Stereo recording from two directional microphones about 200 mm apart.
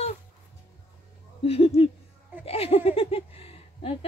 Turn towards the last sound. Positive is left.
turn(degrees=30)  # may be behind; listen again after turning